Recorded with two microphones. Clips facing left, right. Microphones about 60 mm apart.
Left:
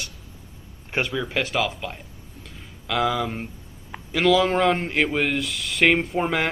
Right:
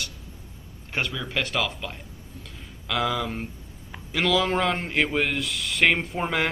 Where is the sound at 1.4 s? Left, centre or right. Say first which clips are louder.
Left 1 dB; centre.